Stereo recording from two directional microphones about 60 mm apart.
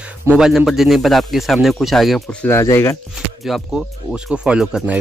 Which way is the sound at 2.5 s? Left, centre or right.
Left.